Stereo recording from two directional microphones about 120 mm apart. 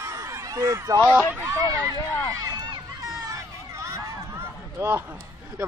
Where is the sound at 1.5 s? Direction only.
30° right (ahead or behind).